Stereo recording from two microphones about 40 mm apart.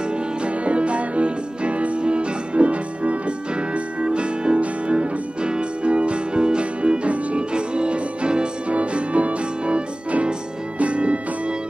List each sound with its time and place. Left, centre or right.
0.7 s music: right